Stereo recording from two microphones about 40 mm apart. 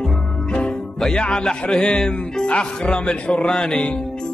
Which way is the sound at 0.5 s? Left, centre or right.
Centre.